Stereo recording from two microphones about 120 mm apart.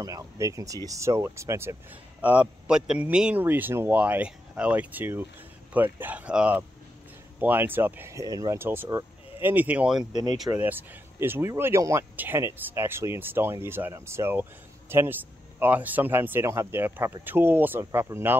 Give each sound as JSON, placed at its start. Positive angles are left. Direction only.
{"t": 0.0, "sound": "speech", "side_deg": -25}
{"t": 2.2, "sound": "speech", "side_deg": -10}